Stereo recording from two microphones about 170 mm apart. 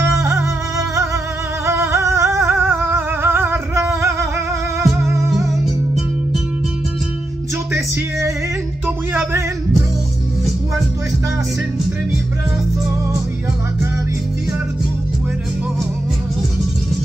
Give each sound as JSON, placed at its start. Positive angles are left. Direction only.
{"t": 0.2, "sound": "music", "side_deg": -15}
{"t": 4.8, "sound": "music", "side_deg": 0}
{"t": 9.1, "sound": "a sound", "side_deg": -15}